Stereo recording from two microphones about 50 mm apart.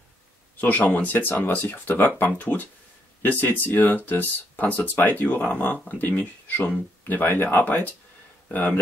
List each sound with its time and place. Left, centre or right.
0.6 s speech: left